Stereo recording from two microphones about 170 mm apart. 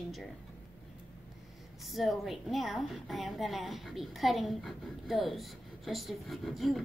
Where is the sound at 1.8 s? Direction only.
Centre (ahead or behind).